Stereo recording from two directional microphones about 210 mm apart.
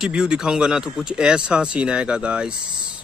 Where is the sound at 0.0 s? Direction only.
5° right (ahead or behind).